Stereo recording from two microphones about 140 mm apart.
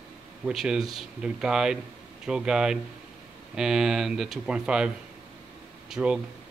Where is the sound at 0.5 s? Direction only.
5° right (ahead or behind).